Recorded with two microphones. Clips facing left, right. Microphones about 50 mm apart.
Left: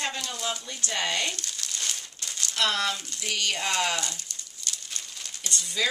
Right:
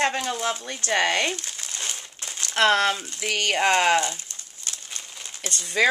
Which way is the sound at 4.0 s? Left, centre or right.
Right.